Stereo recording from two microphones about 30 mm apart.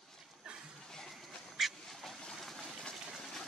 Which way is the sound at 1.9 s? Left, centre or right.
Centre.